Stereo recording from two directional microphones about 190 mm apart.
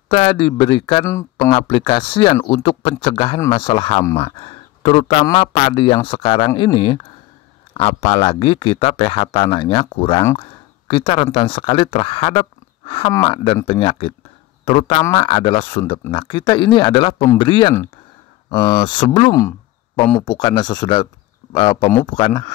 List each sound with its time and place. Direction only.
0.1 s speech: 30° left (ahead or behind)
1.0 s speech: 15° left (ahead or behind)
1.5 s speech: 30° left (ahead or behind)
10.4 s a sound: 30° left (ahead or behind)
11.3 s a man's voice: 30° left (ahead or behind)